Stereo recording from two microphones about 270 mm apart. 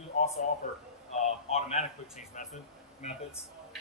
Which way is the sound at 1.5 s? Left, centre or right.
Left.